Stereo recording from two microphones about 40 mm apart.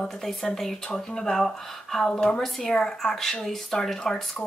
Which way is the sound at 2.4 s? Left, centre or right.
Centre.